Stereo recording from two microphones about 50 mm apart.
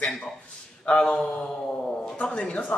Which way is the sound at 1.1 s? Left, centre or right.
Centre.